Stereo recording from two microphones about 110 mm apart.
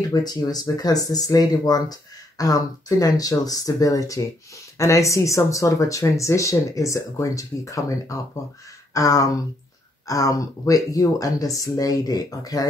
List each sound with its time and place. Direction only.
0.1 s speech: 35° left (ahead or behind)